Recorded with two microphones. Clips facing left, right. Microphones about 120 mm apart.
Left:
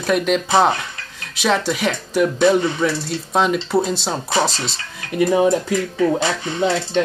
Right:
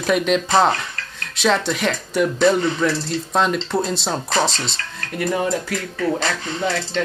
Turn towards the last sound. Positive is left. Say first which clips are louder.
# left 4 dB
turn(degrees=20)  # may be behind; listen again after turning